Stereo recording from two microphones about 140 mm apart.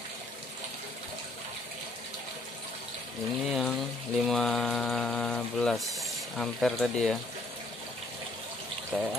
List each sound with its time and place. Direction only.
3.4 s mantra: centre (ahead or behind)
8.9 s speech: 10° right (ahead or behind)